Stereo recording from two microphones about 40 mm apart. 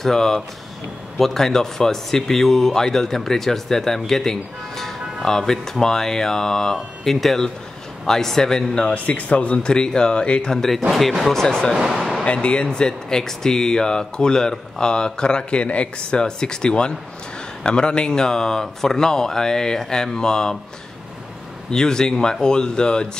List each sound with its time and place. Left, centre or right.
0.0 s speech: centre
8.9 s speech: left
9.7 s speech: centre
10.5 s speech: centre
11.2 s speech: centre
11.9 s a sound: centre
12.3 s speech: left
21.6 s speech: centre